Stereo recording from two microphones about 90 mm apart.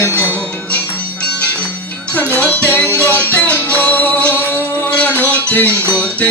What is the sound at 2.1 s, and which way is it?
Music, 20° left (ahead or behind).